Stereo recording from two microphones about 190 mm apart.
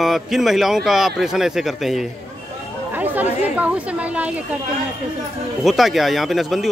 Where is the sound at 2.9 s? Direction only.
10° right (ahead or behind).